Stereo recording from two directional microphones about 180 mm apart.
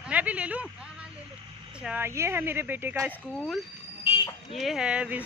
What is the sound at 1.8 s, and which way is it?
Speech, 10° right (ahead or behind).